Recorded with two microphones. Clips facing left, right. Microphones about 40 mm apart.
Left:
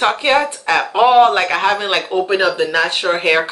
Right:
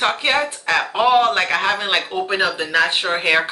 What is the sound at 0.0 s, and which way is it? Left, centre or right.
Speech, centre.